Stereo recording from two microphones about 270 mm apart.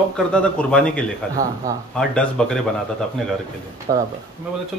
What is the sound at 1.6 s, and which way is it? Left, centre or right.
Speech, centre.